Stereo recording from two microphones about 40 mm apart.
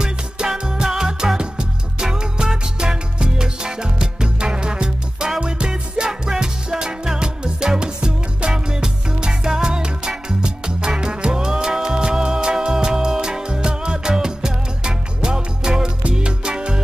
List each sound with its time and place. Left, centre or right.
0.0 s music: centre